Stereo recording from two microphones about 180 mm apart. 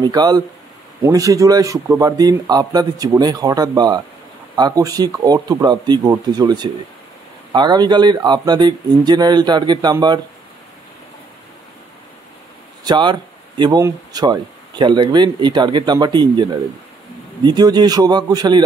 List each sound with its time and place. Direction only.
0.0 s speech: 20° right (ahead or behind)
12.8 s speech: 25° right (ahead or behind)